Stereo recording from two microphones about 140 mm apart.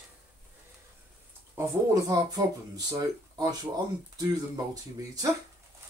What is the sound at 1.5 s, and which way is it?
Speech, 20° right (ahead or behind).